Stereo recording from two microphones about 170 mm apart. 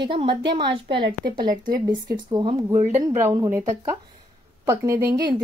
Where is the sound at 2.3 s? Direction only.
25° right (ahead or behind).